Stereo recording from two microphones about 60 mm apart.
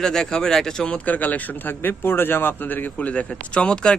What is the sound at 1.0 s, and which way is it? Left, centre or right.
Speech, left.